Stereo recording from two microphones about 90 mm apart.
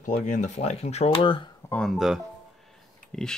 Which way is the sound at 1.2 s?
80° left.